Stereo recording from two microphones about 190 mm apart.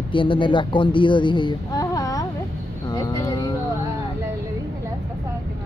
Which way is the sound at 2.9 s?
20° left (ahead or behind).